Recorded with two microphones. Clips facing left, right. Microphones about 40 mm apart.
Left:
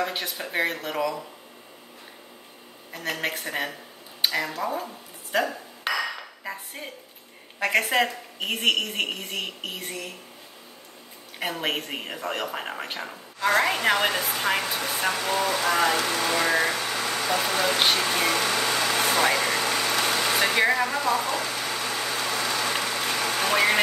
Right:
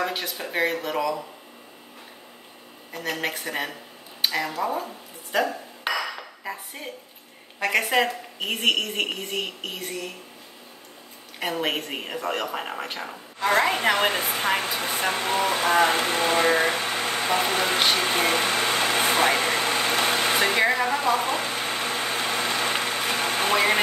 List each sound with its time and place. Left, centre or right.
0.0 s a woman's voice: centre
2.9 s a woman's voice: centre
5.3 s dishes: centre
6.4 s a woman's voice: centre
11.5 s a woman's voice: centre
13.9 s speech: right
18.0 s a sound: right